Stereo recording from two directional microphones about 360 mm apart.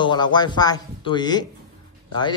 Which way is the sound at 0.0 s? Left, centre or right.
Centre.